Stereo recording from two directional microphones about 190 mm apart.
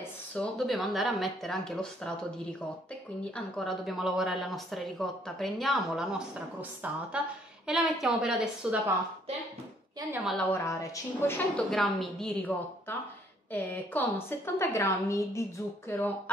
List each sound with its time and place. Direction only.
0.3 s speech: 5° left (ahead or behind)
10.2 s a woman's voice: 5° left (ahead or behind)